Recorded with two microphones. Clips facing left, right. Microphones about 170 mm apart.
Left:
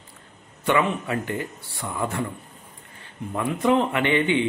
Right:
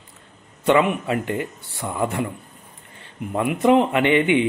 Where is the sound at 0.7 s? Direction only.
20° right (ahead or behind).